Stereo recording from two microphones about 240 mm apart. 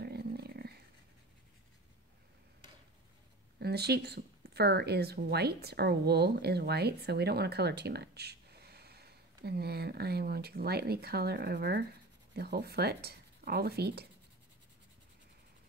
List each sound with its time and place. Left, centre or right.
0.0 s dog: right
3.5 s speech: right